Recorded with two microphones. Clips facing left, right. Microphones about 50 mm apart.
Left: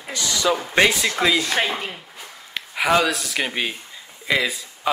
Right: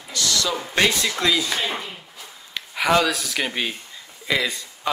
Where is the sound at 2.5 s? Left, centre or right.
Centre.